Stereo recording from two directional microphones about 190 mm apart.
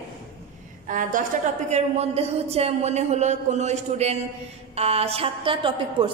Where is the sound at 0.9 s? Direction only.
45° right (ahead or behind).